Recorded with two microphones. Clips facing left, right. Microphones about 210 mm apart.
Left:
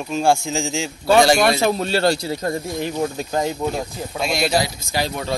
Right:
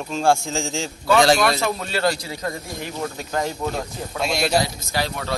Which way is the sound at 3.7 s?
5° left (ahead or behind).